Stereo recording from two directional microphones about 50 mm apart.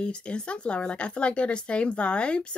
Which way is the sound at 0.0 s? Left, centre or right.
Centre.